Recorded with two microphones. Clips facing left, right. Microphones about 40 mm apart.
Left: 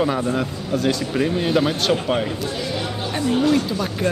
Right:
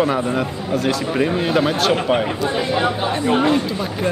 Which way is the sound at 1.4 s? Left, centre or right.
Centre.